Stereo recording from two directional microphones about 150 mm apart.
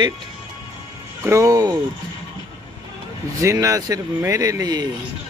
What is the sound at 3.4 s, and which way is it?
Speech, 20° right (ahead or behind).